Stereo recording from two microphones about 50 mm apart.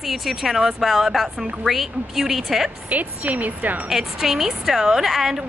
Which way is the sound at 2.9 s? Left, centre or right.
Right.